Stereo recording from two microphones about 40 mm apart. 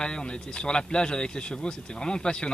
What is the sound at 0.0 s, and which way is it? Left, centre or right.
Speech, left.